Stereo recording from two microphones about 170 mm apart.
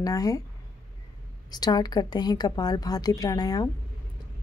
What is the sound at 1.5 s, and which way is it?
A woman's voice, 25° left (ahead or behind).